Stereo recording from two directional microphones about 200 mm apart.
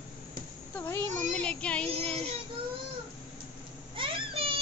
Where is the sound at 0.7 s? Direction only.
10° left (ahead or behind).